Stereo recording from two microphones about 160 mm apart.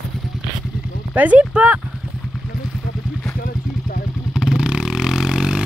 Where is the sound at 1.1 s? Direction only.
10° right (ahead or behind).